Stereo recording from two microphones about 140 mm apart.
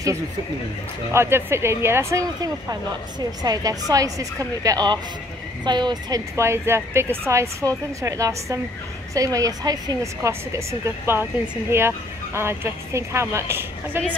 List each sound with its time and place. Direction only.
1.1 s speech: 20° right (ahead or behind)